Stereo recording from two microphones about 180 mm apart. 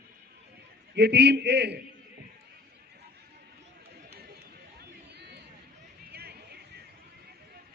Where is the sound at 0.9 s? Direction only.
65° right (ahead or behind).